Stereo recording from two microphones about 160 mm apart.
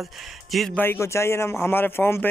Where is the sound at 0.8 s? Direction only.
15° left (ahead or behind).